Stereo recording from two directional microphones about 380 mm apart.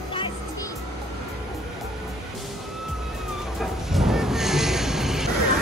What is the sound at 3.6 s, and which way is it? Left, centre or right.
Music, centre.